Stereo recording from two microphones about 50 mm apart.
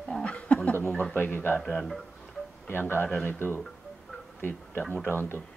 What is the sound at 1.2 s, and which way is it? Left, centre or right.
Speech, left.